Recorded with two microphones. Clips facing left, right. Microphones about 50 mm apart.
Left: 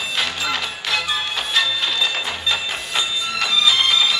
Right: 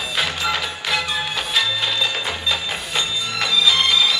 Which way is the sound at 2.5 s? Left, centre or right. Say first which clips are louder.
Even; centre.